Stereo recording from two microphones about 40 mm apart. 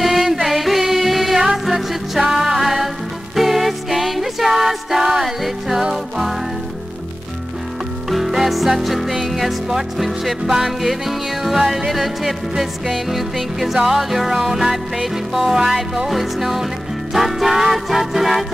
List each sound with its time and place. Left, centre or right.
0.0 s music: centre
8.1 s music: centre